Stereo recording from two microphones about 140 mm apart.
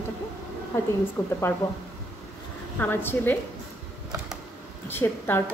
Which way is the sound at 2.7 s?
15° left (ahead or behind).